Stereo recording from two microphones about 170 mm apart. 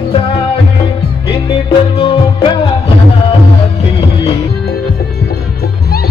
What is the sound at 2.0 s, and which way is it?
Music, 30° left (ahead or behind).